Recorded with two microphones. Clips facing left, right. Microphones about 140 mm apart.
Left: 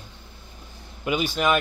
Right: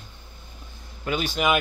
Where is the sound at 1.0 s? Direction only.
10° left (ahead or behind).